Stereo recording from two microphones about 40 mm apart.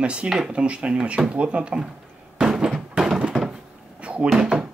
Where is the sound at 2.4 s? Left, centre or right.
Centre.